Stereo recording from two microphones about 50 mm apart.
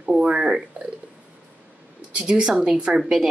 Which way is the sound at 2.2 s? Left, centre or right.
Centre.